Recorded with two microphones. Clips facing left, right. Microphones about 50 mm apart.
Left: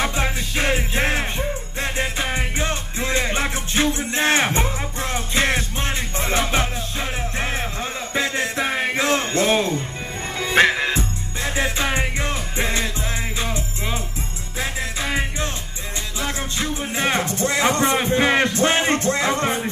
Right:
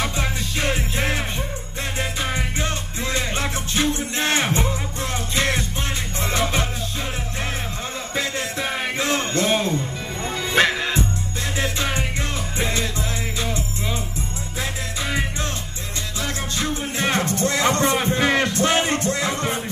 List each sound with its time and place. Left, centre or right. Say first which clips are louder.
0.0 s music: left 2 dB; left
8.1 s music: left 3 dB; left